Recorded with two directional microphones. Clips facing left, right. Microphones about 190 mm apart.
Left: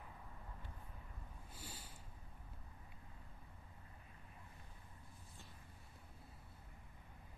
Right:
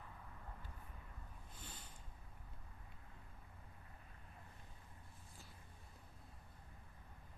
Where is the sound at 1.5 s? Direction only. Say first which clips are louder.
Left 3 dB; 10° left (ahead or behind).